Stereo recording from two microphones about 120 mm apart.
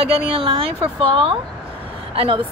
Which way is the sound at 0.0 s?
50° right (ahead or behind).